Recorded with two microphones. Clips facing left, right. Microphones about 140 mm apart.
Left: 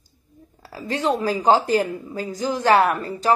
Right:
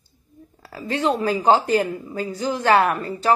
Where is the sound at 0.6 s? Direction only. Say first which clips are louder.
Right 1 dB; 35° left (ahead or behind).